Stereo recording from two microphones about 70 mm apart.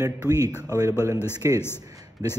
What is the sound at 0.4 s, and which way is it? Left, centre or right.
A man's voice, right.